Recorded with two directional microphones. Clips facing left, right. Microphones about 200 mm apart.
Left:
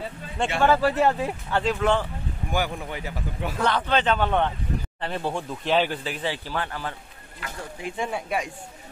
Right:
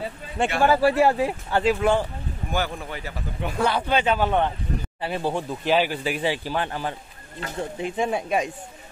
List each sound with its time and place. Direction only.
0.6 s speech: 10° right (ahead or behind)
2.5 s speech: 15° left (ahead or behind)
3.5 s speech: 10° right (ahead or behind)